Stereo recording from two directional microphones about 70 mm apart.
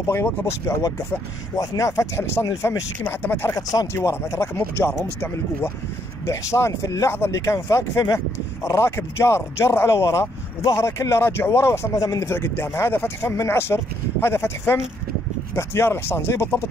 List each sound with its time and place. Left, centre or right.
0.0 s speech: left
1.5 s speech: left
3.0 s speech: left
6.2 s speech: left
11.9 s speech: left
12.2 s speech: left